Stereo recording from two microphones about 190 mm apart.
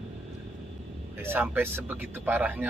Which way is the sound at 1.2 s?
10° right (ahead or behind).